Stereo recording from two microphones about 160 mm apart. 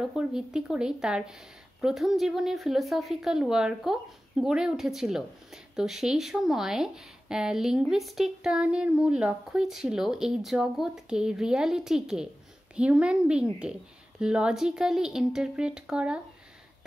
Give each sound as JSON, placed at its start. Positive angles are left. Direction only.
{"t": 0.1, "sound": "a woman's voice", "side_deg": -5}